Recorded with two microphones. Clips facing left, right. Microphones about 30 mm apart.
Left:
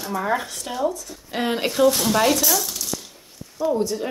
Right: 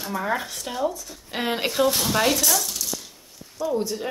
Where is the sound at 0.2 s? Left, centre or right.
Centre.